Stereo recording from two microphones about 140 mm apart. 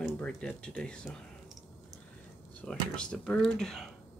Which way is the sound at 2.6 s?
5° left (ahead or behind).